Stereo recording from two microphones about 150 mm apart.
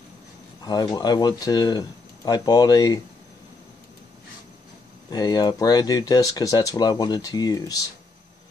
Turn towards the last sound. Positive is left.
turn(degrees=25)  # may be behind; listen again after turning